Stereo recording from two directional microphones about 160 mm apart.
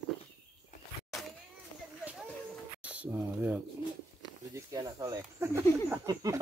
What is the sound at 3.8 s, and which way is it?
Bird, 30° left (ahead or behind).